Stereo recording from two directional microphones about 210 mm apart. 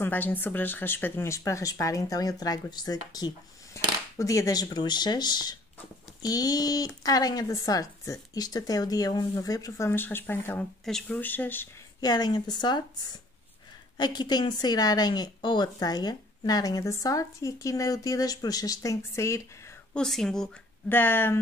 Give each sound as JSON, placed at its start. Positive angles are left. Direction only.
{"t": 0.0, "sound": "speech", "side_deg": 10}
{"t": 19.9, "sound": "speech", "side_deg": 0}